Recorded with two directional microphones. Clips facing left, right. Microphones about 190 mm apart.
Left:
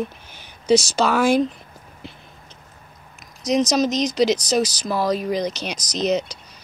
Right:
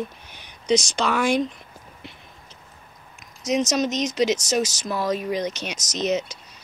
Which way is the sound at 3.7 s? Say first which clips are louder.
Left 3 dB; centre (ahead or behind).